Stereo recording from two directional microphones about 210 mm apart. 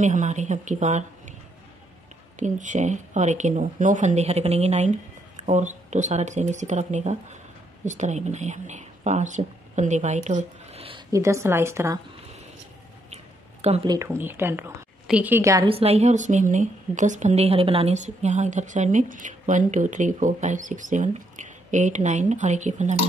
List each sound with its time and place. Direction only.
0.0 s a woman's voice: 35° right (ahead or behind)
2.3 s a woman's voice: 35° right (ahead or behind)
11.1 s a woman's voice: 15° right (ahead or behind)
13.1 s a sound: 30° right (ahead or behind)
13.9 s a woman's voice: 10° right (ahead or behind)
15.7 s a woman's voice: 30° right (ahead or behind)